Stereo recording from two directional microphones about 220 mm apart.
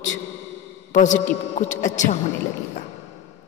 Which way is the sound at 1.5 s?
35° left (ahead or behind).